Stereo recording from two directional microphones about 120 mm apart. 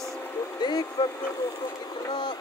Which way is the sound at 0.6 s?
35° left (ahead or behind).